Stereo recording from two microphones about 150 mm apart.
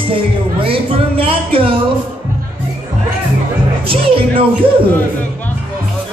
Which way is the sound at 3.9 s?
35° right (ahead or behind).